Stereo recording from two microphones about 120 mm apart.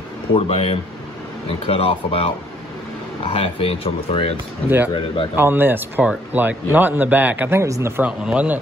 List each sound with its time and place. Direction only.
0.3 s speech: 50° left (ahead or behind)
4.6 s speech: 15° right (ahead or behind)
4.9 s speech: 45° left (ahead or behind)
5.3 s speech: 15° right (ahead or behind)
8.0 s speech: 10° right (ahead or behind)